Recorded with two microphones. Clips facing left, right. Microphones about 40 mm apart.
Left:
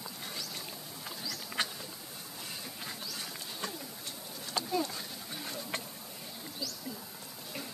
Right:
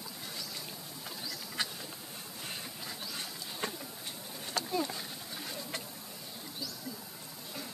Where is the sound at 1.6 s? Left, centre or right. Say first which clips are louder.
Left 2 dB; left.